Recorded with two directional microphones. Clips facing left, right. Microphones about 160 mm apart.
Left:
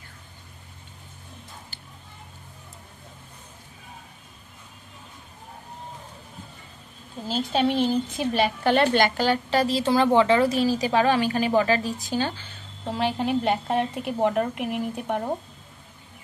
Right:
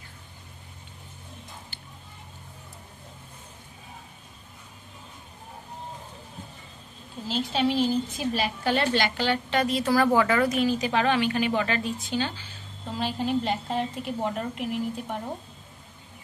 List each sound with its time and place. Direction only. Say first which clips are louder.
7.2 s a woman's voice: left 2 dB; 45° left (ahead or behind)
12.8 s a woman's voice: left 4 dB; 65° left (ahead or behind)